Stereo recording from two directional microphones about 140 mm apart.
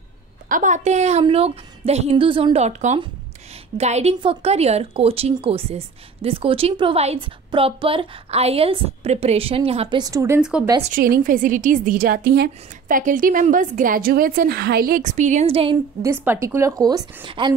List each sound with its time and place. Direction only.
0.5 s a woman's voice: 65° right (ahead or behind); by 2.6 s 40° right (ahead or behind)
2.6 s a woman's voice: 55° right (ahead or behind)
9.9 s speech: 25° right (ahead or behind)
10.4 s speech: 5° right (ahead or behind)
10.9 s a woman's voice: 80° right
12.8 s a woman's voice: 70° right (ahead or behind)
15.5 s a woman's voice: 40° right (ahead or behind)
16.0 s speech: 20° right (ahead or behind)
17.2 s a woman's voice: 35° right (ahead or behind)